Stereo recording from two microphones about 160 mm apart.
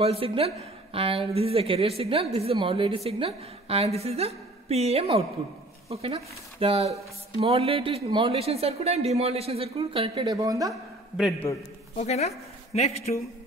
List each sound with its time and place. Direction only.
0.0 s a woman's voice: 35° right (ahead or behind); by 10.7 s 20° right (ahead or behind)
10.7 s speech: centre (ahead or behind)
12.0 s a woman's voice: 40° left (ahead or behind)